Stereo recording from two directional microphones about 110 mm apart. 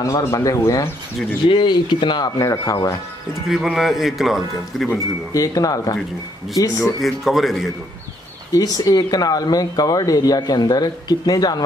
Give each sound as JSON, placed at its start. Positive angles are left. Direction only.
{"t": 0.0, "sound": "speech", "side_deg": 30}
{"t": 1.5, "sound": "speech", "side_deg": 45}
{"t": 3.4, "sound": "speech", "side_deg": 0}
{"t": 5.3, "sound": "speech", "side_deg": 30}
{"t": 6.8, "sound": "speech", "side_deg": 0}
{"t": 8.5, "sound": "speech", "side_deg": 35}